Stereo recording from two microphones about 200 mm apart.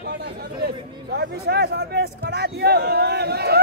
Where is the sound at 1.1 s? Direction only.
55° right (ahead or behind).